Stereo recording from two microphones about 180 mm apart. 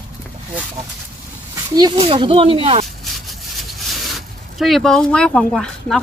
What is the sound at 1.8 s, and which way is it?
Speech, 25° right (ahead or behind).